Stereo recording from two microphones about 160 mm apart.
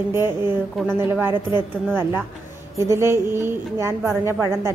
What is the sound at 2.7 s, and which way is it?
A woman's voice, 15° right (ahead or behind).